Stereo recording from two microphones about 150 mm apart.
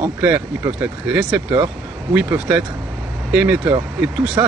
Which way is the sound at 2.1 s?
10° right (ahead or behind).